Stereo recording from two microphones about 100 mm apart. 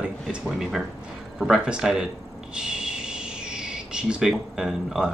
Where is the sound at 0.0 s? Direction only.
5° right (ahead or behind).